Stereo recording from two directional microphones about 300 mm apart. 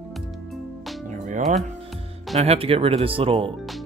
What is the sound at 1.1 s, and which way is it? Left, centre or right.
Music, right.